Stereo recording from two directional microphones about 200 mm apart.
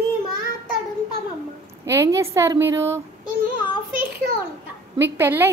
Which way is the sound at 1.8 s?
15° right (ahead or behind).